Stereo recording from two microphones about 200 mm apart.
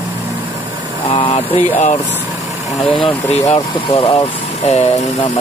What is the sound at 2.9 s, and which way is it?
Speech, 30° left (ahead or behind).